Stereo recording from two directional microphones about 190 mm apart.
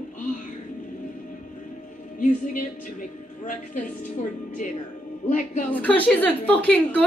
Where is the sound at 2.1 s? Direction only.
40° left (ahead or behind).